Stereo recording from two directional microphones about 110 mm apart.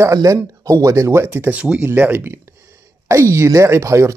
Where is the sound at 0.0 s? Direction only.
30° right (ahead or behind).